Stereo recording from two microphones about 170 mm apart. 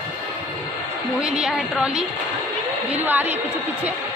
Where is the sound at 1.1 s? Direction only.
5° right (ahead or behind).